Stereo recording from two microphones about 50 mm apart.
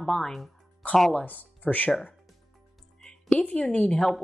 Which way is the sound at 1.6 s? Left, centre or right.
Left.